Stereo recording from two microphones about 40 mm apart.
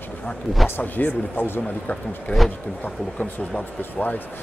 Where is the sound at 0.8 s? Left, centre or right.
Left.